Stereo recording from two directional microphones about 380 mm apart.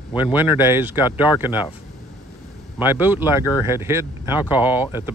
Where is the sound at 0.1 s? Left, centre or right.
Centre.